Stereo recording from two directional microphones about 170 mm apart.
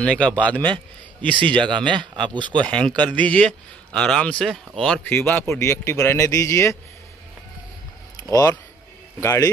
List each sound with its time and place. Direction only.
0.0 s speech: 5° left (ahead or behind)
1.7 s speech: 25° right (ahead or behind)
2.6 s speech: 5° left (ahead or behind)
8.2 s speech: 20° left (ahead or behind)